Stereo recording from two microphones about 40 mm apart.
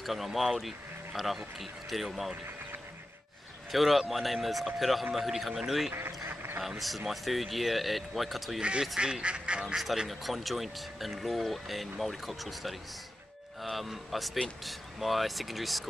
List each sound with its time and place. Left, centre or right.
0.0 s speech: centre
3.7 s speech: centre
6.2 s a sound: right
7.1 s speech: centre
8.5 s speech: right
10.0 s speech: centre